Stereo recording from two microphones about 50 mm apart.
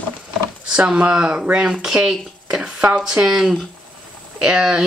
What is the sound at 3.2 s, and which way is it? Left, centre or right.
Speech, centre.